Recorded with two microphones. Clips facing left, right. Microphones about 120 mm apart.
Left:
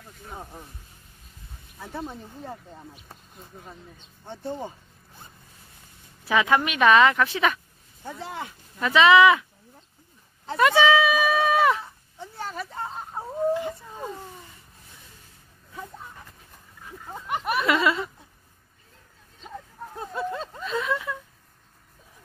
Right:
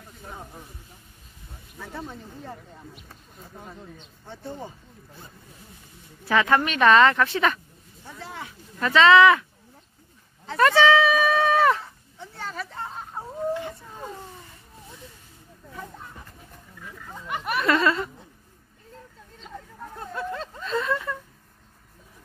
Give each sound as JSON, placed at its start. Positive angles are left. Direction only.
{"t": 1.8, "sound": "speech", "side_deg": 15}
{"t": 4.3, "sound": "speech", "side_deg": 20}
{"t": 6.2, "sound": "speech", "side_deg": 10}
{"t": 8.7, "sound": "speech", "side_deg": 10}
{"t": 10.5, "sound": "a sound", "side_deg": 10}
{"t": 17.0, "sound": "a sound", "side_deg": 20}
{"t": 17.5, "sound": "speech", "side_deg": 10}
{"t": 19.4, "sound": "hubbub", "side_deg": 10}
{"t": 20.3, "sound": "a sound", "side_deg": 5}